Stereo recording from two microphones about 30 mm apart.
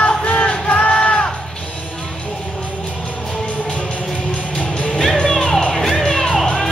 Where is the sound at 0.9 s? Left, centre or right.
Left.